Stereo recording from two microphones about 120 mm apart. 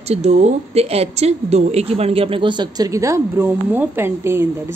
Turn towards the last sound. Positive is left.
turn(degrees=-20)  # may be behind; listen again after turning